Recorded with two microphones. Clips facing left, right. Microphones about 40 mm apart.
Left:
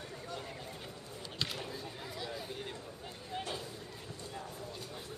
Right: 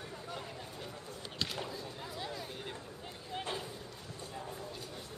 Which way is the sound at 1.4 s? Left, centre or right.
Centre.